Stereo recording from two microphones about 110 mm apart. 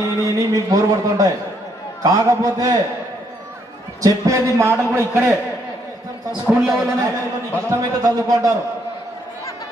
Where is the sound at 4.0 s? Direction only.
30° right (ahead or behind).